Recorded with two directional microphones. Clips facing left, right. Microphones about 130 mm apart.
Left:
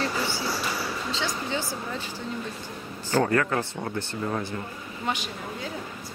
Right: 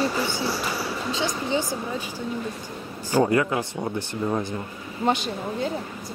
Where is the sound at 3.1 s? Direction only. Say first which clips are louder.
Right 3 dB; 15° right (ahead or behind).